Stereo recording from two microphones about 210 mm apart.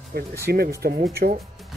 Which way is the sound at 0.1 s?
50° right (ahead or behind).